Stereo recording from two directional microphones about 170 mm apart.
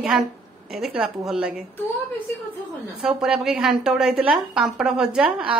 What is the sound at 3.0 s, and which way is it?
A woman's voice, 5° right (ahead or behind).